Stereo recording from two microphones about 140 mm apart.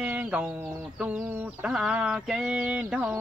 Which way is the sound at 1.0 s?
5° right (ahead or behind).